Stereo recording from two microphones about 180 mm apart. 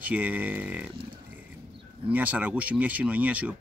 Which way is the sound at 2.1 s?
10° right (ahead or behind).